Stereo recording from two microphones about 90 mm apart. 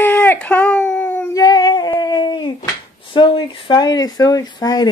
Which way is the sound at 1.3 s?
45° left (ahead or behind).